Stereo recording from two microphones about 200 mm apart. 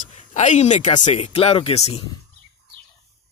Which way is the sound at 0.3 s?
35° left (ahead or behind).